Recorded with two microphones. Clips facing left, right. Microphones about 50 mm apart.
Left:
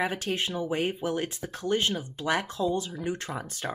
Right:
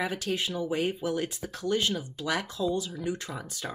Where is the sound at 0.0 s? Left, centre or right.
Left.